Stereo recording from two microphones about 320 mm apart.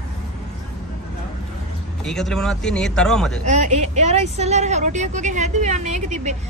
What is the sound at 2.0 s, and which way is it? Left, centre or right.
Speech, centre.